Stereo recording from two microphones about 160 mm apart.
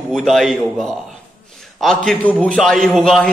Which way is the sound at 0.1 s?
Centre (ahead or behind).